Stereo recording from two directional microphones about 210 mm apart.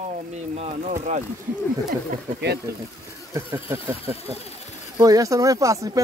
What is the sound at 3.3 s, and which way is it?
Speech, 10° right (ahead or behind).